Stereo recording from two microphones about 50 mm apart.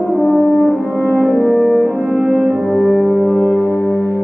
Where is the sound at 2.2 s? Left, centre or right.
Right.